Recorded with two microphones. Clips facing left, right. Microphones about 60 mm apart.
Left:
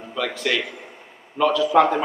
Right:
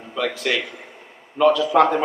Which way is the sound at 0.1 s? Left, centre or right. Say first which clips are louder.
Right 1 dB; centre.